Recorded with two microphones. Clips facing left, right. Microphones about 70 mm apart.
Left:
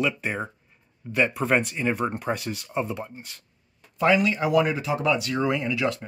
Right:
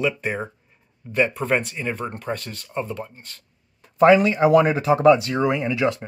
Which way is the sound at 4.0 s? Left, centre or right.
Right.